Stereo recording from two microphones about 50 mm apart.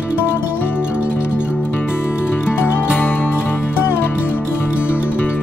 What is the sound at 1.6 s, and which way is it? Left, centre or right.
Music, left.